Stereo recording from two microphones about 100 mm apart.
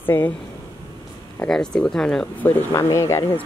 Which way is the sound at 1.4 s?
5° left (ahead or behind).